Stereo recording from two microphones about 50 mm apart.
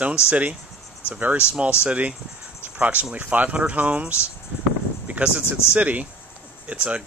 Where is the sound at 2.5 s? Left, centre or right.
Right.